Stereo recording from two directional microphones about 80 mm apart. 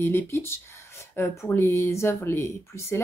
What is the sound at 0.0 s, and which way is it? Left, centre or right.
A woman's voice, left.